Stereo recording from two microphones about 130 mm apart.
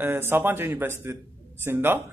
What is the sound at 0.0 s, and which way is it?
Speech, 15° right (ahead or behind).